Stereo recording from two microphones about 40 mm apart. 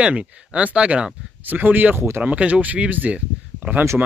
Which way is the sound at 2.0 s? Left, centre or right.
Right.